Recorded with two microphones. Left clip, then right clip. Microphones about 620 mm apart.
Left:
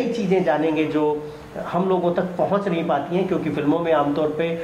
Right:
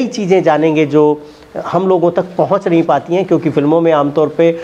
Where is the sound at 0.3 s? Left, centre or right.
Right.